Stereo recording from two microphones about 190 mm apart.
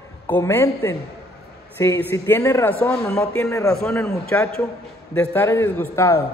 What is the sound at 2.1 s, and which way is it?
A man's voice, 10° left (ahead or behind).